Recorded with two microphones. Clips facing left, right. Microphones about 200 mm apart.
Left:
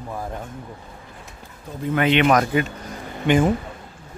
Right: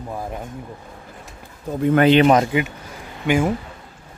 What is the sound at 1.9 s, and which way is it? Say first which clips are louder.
Speech: right 4 dB; 35° right (ahead or behind).